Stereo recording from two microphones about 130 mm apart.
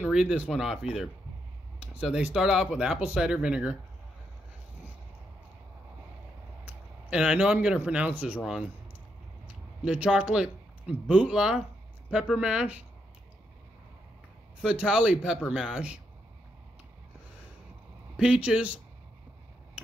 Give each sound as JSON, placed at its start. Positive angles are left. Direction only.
{"t": 0.0, "sound": "speech", "side_deg": -5}
{"t": 1.8, "sound": "a man's voice", "side_deg": -5}
{"t": 6.6, "sound": "speech", "side_deg": -5}
{"t": 9.8, "sound": "a man's voice", "side_deg": -10}
{"t": 14.6, "sound": "a man's voice", "side_deg": -5}
{"t": 18.1, "sound": "a man's voice", "side_deg": -5}